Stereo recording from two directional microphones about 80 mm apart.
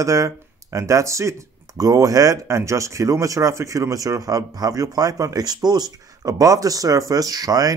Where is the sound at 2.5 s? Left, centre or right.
Right.